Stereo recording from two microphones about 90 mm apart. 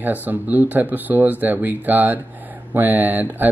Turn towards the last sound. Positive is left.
turn(degrees=-20)  # may be behind; listen again after turning